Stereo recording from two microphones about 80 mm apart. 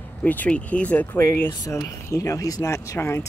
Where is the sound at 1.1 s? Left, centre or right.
Left.